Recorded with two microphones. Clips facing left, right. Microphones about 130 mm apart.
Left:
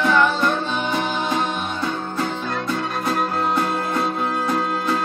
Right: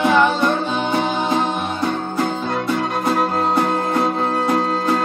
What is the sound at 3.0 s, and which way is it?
Music, 25° right (ahead or behind).